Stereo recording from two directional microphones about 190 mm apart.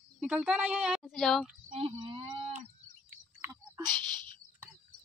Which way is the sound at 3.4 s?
20° right (ahead or behind).